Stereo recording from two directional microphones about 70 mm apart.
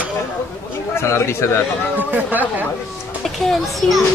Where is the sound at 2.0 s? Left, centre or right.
Right.